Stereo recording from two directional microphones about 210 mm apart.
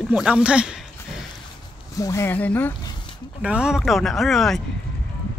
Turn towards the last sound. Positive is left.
turn(degrees=0)  # may be behind; listen again after turning